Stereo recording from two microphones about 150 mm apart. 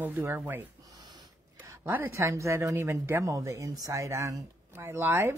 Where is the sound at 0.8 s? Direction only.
25° right (ahead or behind).